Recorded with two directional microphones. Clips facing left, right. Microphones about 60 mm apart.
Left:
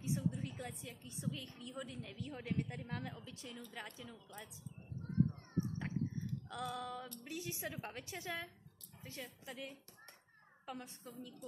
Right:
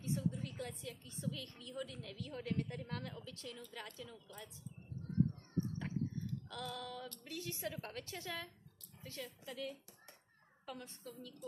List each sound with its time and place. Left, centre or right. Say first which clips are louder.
0.0 s a woman's voice: even; centre
5.6 s cat: even; centre
6.5 s a woman's voice: left 5 dB; centre